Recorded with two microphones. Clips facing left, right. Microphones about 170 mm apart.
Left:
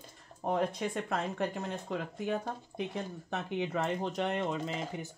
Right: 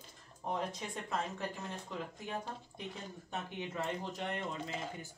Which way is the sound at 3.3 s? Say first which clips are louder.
Left 6 dB; 70° left (ahead or behind).